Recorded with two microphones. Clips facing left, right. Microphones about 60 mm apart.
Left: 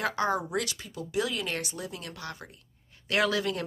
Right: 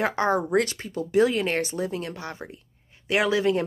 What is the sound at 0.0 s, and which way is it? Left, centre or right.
Speech, right.